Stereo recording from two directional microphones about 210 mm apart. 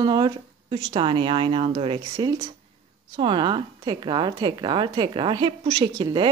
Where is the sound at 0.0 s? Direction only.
20° right (ahead or behind).